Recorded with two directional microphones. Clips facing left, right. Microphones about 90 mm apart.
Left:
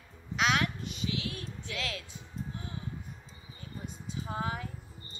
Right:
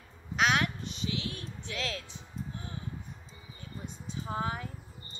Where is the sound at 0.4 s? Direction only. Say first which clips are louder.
Right 1 dB; 35° right (ahead or behind).